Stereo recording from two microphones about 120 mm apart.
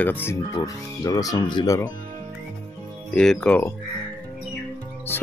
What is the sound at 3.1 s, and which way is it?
Speech, 5° left (ahead or behind).